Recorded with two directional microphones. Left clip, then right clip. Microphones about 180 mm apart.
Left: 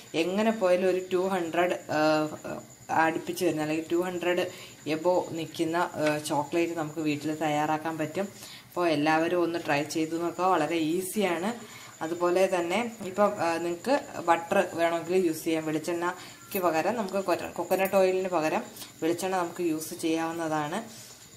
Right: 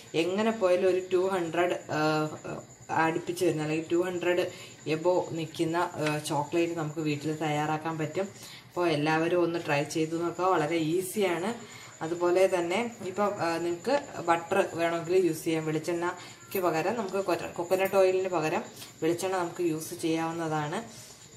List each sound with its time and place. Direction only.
0.1 s speech: 20° left (ahead or behind)
17.3 s speech: 25° left (ahead or behind)